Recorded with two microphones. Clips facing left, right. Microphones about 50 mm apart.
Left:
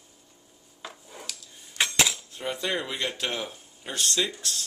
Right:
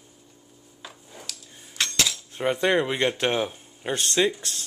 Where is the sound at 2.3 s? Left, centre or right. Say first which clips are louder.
Right 10 dB; right.